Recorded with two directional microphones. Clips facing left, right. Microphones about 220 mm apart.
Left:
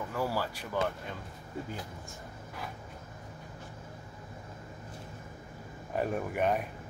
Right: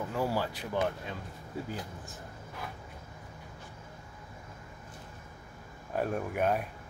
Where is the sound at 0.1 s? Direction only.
20° right (ahead or behind).